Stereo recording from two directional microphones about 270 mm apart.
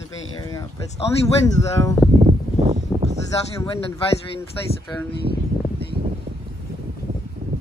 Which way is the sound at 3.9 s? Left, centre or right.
Centre.